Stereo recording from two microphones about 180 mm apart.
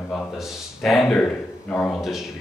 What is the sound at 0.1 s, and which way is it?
A man's voice, centre (ahead or behind).